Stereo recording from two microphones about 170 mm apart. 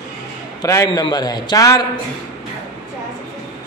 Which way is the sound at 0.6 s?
20° left (ahead or behind).